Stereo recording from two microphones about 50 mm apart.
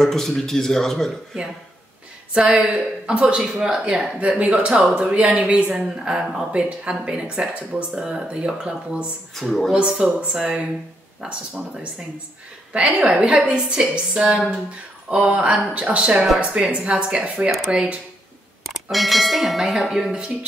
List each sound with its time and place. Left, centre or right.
0.0 s a man's voice: centre
2.3 s speech: right
9.3 s speech: centre
9.8 s speech: centre
13.0 s speech: right
18.6 s speech: centre